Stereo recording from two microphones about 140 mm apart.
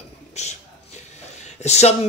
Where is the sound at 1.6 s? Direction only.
50° left (ahead or behind).